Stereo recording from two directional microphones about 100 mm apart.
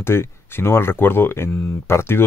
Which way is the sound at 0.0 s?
25° left (ahead or behind).